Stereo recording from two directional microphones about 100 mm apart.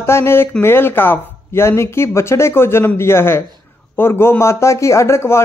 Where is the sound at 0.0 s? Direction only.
25° left (ahead or behind).